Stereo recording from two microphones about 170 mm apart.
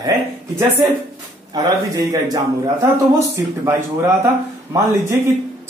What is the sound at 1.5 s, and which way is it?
Speech, 20° right (ahead or behind).